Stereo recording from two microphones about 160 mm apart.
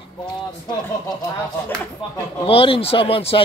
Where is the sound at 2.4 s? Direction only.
35° left (ahead or behind).